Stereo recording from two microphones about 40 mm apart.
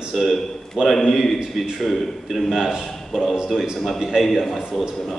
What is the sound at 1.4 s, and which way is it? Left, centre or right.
Speech, centre.